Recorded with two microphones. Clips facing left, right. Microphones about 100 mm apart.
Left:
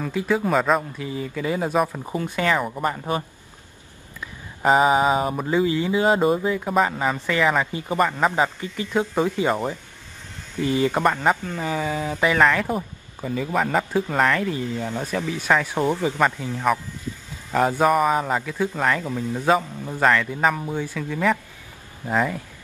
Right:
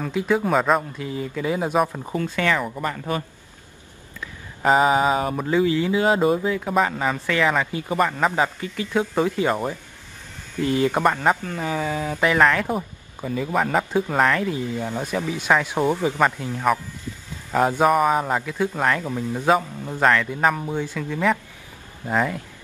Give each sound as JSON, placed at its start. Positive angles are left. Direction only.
{"t": 0.0, "sound": "speech", "side_deg": 0}
{"t": 2.1, "sound": "a man's voice", "side_deg": 15}
{"t": 4.6, "sound": "speech", "side_deg": 0}